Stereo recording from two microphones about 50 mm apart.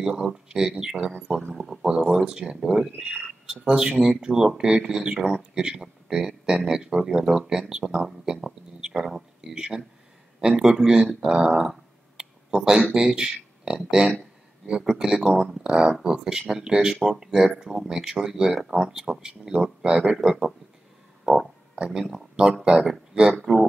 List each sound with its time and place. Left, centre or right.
0.0 s speech: centre
12.2 s a sound: centre
12.9 s speech: centre
21.7 s speech: centre
23.3 s speech: centre